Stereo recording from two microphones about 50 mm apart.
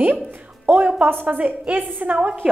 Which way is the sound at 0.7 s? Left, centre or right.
Right.